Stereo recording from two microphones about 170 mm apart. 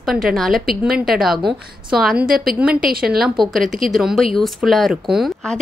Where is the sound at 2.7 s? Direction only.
60° right (ahead or behind).